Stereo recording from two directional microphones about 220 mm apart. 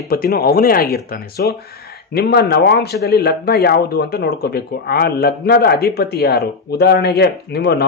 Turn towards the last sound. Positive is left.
turn(degrees=45)  # may be behind; listen again after turning